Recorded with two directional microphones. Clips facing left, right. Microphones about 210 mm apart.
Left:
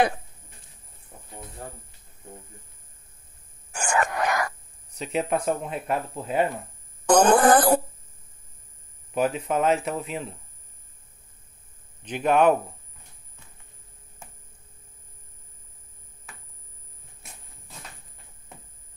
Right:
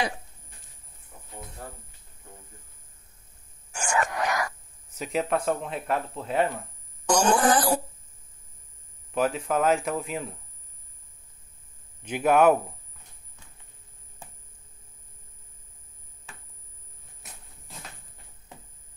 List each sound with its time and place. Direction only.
3.7 s a sound: 55° left (ahead or behind)
4.9 s speech: 5° right (ahead or behind)
7.1 s speech: 55° left (ahead or behind)
9.1 s speech: 5° left (ahead or behind)
12.0 s a man's voice: 10° right (ahead or behind)